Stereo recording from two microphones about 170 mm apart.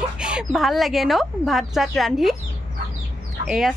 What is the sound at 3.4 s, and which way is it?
Speech, 5° right (ahead or behind).